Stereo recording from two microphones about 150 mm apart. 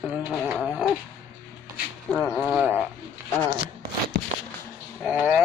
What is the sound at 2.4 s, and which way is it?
Sheep, 10° right (ahead or behind).